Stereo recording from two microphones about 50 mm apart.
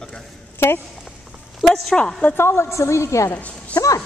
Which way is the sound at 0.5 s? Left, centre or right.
Left.